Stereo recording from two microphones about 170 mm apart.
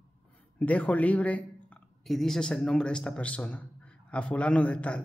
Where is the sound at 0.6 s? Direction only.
10° left (ahead or behind).